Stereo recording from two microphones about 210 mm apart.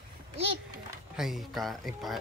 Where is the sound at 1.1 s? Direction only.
Centre (ahead or behind).